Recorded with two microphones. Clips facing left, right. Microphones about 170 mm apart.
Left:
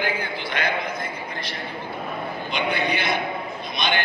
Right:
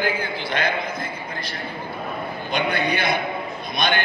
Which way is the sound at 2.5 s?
50° right (ahead or behind).